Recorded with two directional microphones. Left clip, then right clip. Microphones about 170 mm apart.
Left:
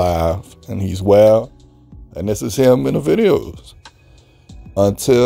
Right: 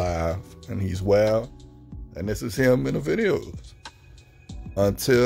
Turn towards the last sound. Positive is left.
turn(degrees=25)  # may be behind; listen again after turning